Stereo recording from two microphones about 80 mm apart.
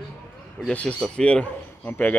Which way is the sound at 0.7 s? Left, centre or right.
Centre.